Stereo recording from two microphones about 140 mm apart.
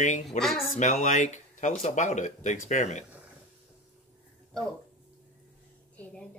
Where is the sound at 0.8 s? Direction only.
60° left (ahead or behind).